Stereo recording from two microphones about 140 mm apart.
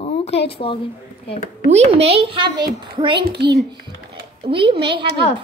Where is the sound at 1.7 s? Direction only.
45° right (ahead or behind).